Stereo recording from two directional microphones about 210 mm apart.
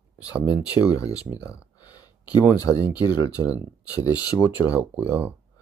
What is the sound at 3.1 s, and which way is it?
Speech, 5° right (ahead or behind).